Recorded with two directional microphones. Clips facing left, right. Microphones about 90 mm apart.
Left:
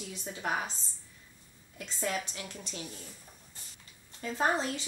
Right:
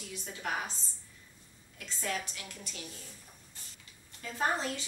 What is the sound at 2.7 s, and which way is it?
Speech, 25° left (ahead or behind).